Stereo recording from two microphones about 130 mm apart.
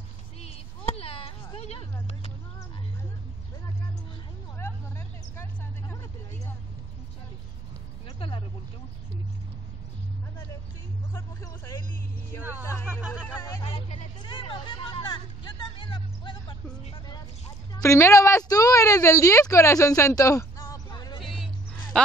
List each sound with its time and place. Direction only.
0.4 s a sound: 50° left (ahead or behind)
4.6 s vehicle: 20° left (ahead or behind)
8.2 s vehicle: 40° left (ahead or behind)
11.1 s vehicle: 20° left (ahead or behind)
14.2 s vehicle: 40° left (ahead or behind)
17.7 s a sound: 20° left (ahead or behind)
21.9 s speech: 5° left (ahead or behind)